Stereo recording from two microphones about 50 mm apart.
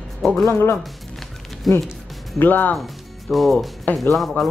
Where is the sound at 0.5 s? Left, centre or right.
Left.